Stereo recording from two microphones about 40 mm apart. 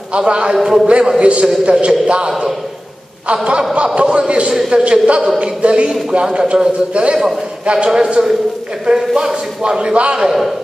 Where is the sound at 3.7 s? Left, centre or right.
Right.